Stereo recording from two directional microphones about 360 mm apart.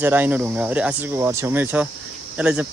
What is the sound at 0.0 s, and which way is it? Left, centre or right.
Speech, centre.